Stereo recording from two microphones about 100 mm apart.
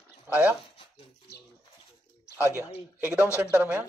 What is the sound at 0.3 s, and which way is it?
Speech, 15° right (ahead or behind).